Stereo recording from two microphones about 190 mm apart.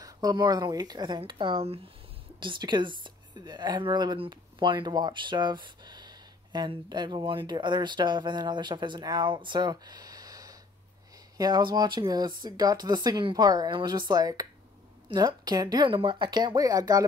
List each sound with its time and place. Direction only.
0.0 s speech: 20° right (ahead or behind)